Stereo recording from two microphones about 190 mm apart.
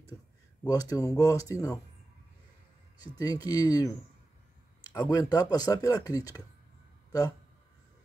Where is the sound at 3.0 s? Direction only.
20° left (ahead or behind).